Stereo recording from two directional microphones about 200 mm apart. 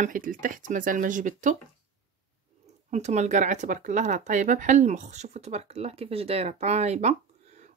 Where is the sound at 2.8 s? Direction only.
35° right (ahead or behind).